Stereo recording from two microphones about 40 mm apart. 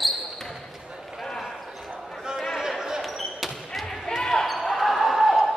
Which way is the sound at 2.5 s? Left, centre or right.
Centre.